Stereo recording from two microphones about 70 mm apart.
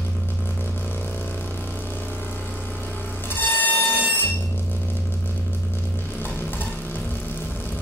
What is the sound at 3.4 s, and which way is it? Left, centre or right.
Vehicle, left.